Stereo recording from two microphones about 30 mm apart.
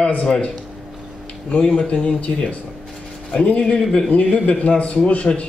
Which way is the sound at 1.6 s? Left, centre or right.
Left.